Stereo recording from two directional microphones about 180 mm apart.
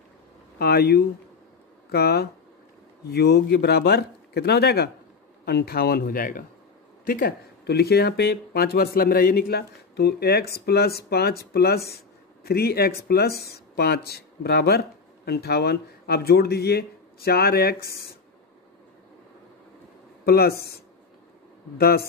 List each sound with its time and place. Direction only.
0.6 s speech: 60° left (ahead or behind)
20.2 s speech: 60° left (ahead or behind)